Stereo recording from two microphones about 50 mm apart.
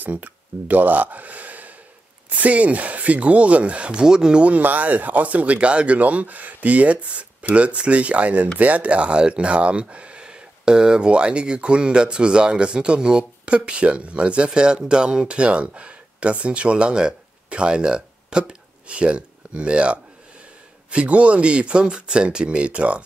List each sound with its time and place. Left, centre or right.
0.0 s speech: right